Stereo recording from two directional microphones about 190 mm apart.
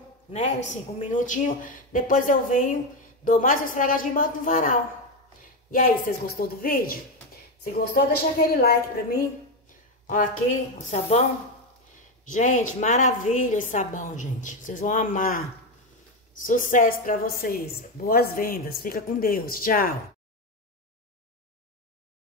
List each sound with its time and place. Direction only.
0.7 s speech: 40° left (ahead or behind)
9.7 s a sound: 45° left (ahead or behind)
10.9 s a woman's voice: 35° left (ahead or behind)
12.3 s a woman's voice: 40° left (ahead or behind)